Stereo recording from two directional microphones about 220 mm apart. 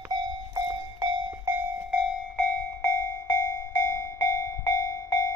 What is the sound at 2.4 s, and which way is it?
Train, 10° left (ahead or behind).